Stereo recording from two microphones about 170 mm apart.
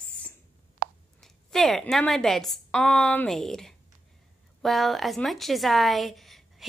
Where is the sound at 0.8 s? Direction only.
65° right (ahead or behind).